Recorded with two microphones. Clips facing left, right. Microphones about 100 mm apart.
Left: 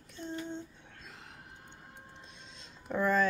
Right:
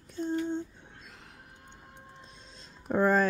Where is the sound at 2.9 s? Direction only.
40° right (ahead or behind).